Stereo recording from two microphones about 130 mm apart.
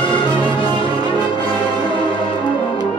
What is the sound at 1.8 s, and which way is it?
Music, 40° left (ahead or behind).